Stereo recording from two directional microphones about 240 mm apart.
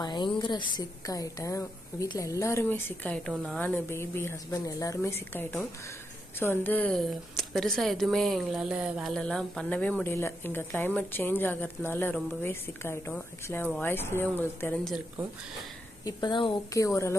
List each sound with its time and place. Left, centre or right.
0.0 s a woman's voice: centre
16.1 s a woman's voice: centre